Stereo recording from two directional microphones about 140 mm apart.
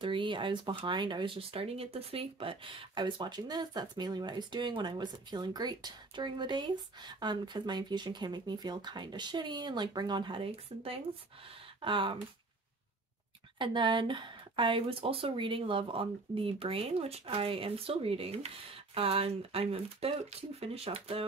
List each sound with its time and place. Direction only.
0.0 s speech: 35° right (ahead or behind)
13.6 s speech: 35° right (ahead or behind)